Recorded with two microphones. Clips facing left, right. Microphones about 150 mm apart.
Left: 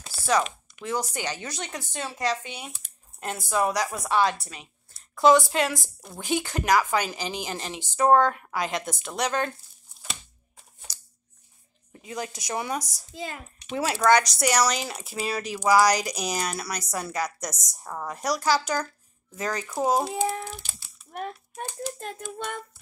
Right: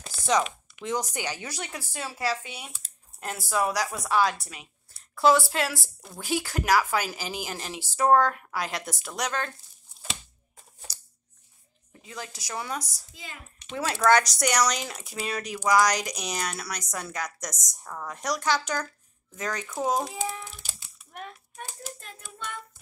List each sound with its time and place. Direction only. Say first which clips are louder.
0.1 s a sound: left 1 dB; 20° right (ahead or behind)
0.4 s speech: left 1 dB; 10° right (ahead or behind)
12.0 s a woman's voice: left 6 dB; 20° left (ahead or behind)
14.0 s a woman's voice: left 1 dB; centre (ahead or behind)
20.2 s speech: left 6 dB; 40° left (ahead or behind)
20.6 s a sound: even; 5° right (ahead or behind)
21.1 s child singing: left 7 dB; 35° left (ahead or behind)